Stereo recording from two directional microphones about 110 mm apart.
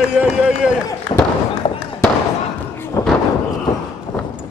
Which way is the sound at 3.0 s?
25° left (ahead or behind).